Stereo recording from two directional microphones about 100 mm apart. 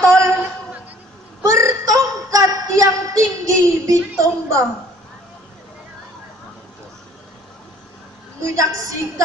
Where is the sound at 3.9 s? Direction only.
35° right (ahead or behind).